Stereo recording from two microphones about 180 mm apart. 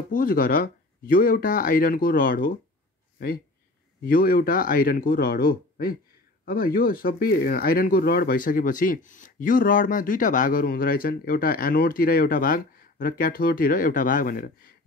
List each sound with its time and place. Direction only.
0.1 s speech: 50° left (ahead or behind)
4.0 s speech: 55° left (ahead or behind)